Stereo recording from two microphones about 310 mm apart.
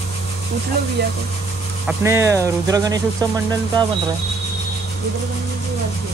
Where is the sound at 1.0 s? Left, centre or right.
Right.